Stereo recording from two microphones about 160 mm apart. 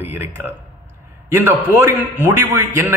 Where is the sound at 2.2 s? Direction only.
10° right (ahead or behind).